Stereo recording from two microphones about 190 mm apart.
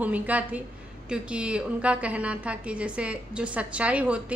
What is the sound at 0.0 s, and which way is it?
Speech, 10° right (ahead or behind).